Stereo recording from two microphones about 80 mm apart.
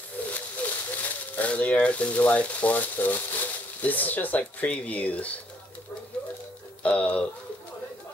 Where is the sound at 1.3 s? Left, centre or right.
Centre.